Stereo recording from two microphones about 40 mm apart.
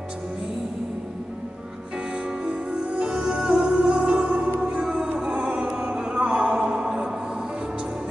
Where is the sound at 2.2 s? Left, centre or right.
Right.